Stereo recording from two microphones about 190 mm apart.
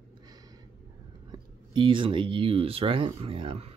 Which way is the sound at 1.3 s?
25° right (ahead or behind).